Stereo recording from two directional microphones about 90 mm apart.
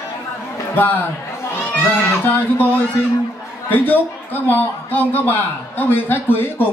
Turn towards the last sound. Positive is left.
turn(degrees=25)  # may be behind; listen again after turning